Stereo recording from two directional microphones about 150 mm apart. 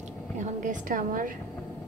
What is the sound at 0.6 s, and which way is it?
Speech, 60° right (ahead or behind).